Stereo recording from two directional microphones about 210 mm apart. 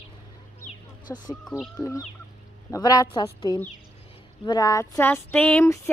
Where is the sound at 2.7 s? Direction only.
15° left (ahead or behind).